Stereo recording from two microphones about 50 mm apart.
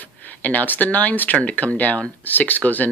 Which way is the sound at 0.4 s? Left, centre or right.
Left.